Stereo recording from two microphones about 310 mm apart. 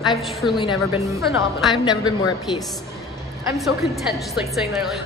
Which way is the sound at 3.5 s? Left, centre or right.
Centre.